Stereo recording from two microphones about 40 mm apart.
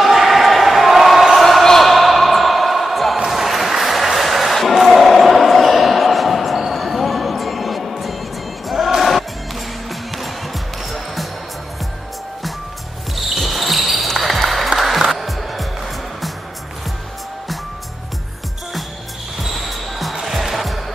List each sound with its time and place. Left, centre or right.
0.0 s basketball bounce: centre
1.3 s a sound: centre
3.3 s music: centre
13.3 s basketball bounce: centre
14.7 s applause: centre
15.0 s music: centre
19.5 s basketball bounce: centre